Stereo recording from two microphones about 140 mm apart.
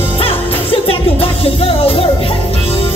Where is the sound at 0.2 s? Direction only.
40° left (ahead or behind).